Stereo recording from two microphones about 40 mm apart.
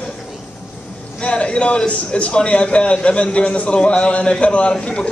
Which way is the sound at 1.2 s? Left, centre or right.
Left.